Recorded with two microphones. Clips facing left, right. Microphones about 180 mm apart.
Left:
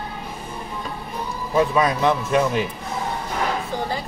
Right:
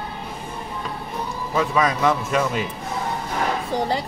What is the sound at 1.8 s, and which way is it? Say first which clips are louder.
Speech: left 1 dB; 20° left (ahead or behind).